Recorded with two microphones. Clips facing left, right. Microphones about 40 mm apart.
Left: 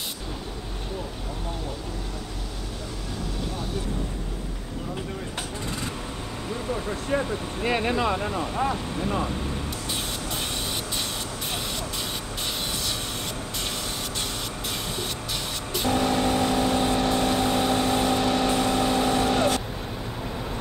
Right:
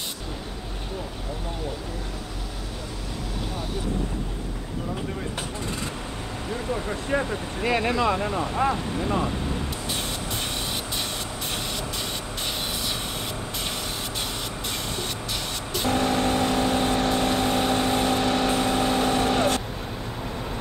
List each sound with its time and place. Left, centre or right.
6.7 s speech: centre
7.6 s speech: centre
8.5 s speech: right
15.7 s vehicle: centre